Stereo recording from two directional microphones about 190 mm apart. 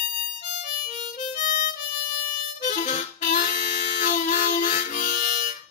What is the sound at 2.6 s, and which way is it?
Harmonica, 40° left (ahead or behind).